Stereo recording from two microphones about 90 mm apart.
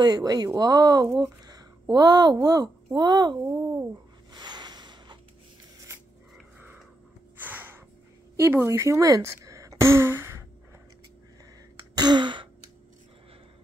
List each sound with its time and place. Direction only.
0.0 s speech: 45° right (ahead or behind)
3.4 s speech: 30° right (ahead or behind)
4.3 s snort: 55° right (ahead or behind)
7.4 s a sound: 20° right (ahead or behind)
12.0 s gasp: 55° right (ahead or behind)